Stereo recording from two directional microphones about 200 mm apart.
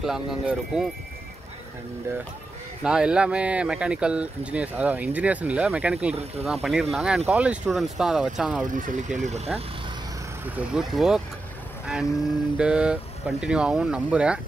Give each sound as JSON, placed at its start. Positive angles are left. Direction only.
{"t": 0.0, "sound": "speech", "side_deg": 0}
{"t": 2.8, "sound": "speech", "side_deg": -5}
{"t": 8.7, "sound": "speech", "side_deg": -40}
{"t": 10.5, "sound": "speech", "side_deg": -5}
{"t": 11.8, "sound": "vehicle", "side_deg": -5}
{"t": 12.5, "sound": "speech", "side_deg": -5}